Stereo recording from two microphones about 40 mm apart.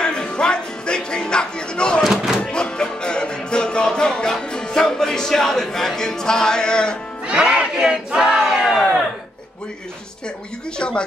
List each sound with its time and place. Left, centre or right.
0.0 s music: left
7.2 s battle cry: right
8.3 s crowd: centre
10.8 s speech: left